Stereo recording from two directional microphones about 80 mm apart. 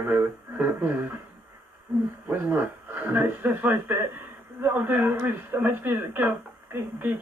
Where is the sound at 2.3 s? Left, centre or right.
Right.